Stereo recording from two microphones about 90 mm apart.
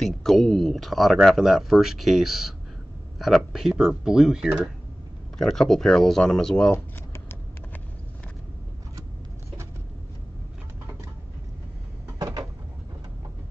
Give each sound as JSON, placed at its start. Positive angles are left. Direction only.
{"t": 0.0, "sound": "speech", "side_deg": 5}
{"t": 5.4, "sound": "speech", "side_deg": 5}
{"t": 6.7, "sound": "typing", "side_deg": 25}
{"t": 12.2, "sound": "cupboard open or close", "side_deg": -45}